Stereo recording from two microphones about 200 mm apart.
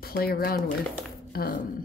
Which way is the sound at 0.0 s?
50° left (ahead or behind).